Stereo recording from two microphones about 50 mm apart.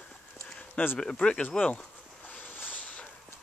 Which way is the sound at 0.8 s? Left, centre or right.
Left.